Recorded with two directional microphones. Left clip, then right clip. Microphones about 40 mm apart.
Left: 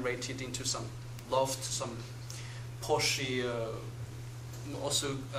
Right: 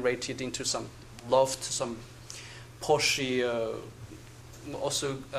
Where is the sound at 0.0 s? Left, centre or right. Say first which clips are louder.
Right 6 dB; right.